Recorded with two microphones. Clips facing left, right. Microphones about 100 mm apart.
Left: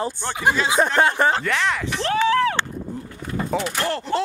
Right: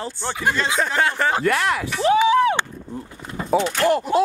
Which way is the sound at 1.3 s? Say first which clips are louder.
Right 2 dB; 5° right (ahead or behind).